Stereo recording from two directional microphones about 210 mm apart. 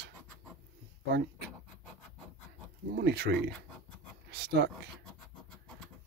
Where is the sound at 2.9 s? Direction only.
50° right (ahead or behind).